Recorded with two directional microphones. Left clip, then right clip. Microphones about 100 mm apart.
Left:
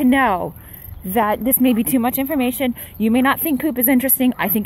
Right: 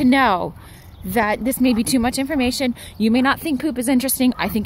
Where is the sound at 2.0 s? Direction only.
10° right (ahead or behind).